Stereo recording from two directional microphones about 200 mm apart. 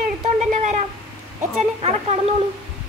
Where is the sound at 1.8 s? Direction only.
30° right (ahead or behind).